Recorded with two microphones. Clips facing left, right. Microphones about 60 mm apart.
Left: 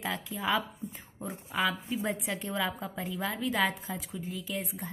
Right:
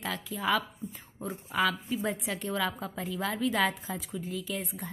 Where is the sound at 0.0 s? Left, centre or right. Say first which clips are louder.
Right 1 dB; centre.